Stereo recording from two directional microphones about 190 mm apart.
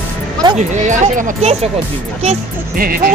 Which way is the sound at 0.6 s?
40° right (ahead or behind).